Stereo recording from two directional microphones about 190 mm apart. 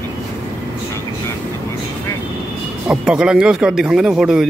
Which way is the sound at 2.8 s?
5° right (ahead or behind).